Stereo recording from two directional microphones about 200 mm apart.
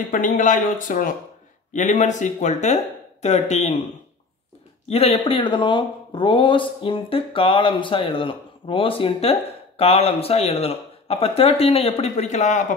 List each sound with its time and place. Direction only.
0.1 s speech: 40° left (ahead or behind)
4.8 s speech: 30° left (ahead or behind)